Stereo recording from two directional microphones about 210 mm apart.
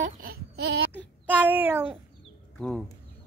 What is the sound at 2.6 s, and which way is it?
Speech, centre (ahead or behind).